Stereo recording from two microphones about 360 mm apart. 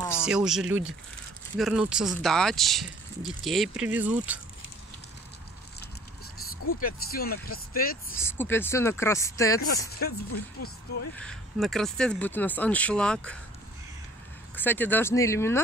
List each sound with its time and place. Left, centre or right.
0.1 s speech: centre
6.8 s speech: left
8.2 s speech: centre
9.8 s speech: left
11.1 s speech: centre
14.5 s speech: centre